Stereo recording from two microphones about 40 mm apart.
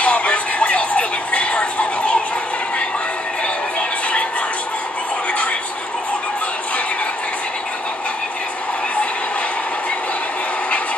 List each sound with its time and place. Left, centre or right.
0.0 s music: left